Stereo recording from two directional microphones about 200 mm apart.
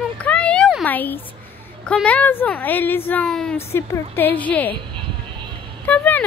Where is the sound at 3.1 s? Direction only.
5° left (ahead or behind).